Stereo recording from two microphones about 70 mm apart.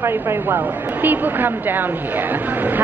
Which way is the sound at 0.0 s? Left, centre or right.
Right.